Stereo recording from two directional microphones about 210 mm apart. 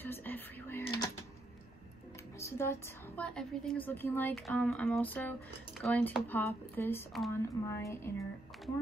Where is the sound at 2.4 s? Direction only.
10° left (ahead or behind).